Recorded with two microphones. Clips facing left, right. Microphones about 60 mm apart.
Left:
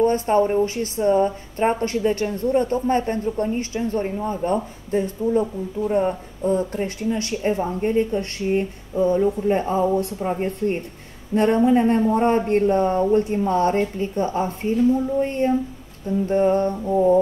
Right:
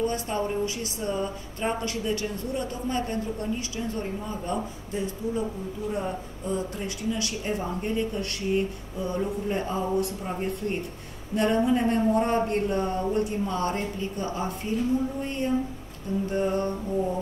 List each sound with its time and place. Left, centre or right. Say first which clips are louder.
0.0 s a woman's voice: left 10 dB; left